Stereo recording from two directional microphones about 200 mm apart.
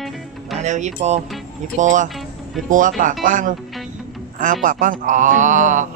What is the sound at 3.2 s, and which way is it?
Speech, 40° right (ahead or behind).